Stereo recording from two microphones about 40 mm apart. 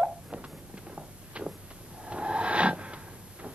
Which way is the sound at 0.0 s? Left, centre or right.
Right.